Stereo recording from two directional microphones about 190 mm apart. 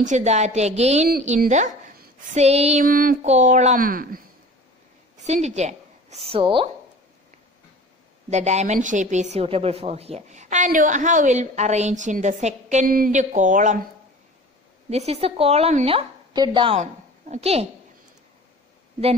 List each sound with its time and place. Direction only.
0.0 s a woman's voice: 40° right (ahead or behind)
5.1 s a woman's voice: 35° right (ahead or behind)
8.3 s a woman's voice: 35° right (ahead or behind)
14.9 s a woman's voice: 35° right (ahead or behind)